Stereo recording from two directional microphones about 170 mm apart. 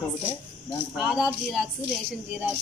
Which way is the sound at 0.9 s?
5° right (ahead or behind).